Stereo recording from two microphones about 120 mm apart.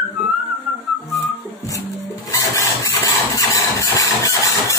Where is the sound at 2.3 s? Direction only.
30° left (ahead or behind).